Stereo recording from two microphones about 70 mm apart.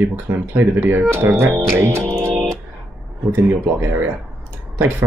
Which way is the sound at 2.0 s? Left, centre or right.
Centre.